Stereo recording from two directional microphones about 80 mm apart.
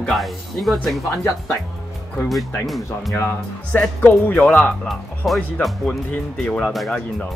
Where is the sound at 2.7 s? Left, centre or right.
Centre.